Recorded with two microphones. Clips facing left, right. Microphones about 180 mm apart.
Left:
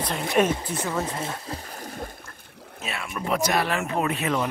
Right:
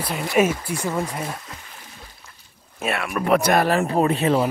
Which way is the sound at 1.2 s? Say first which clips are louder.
Even; 30° left (ahead or behind).